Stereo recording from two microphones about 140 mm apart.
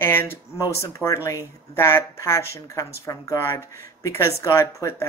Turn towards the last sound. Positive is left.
turn(degrees=20)  # may be behind; listen again after turning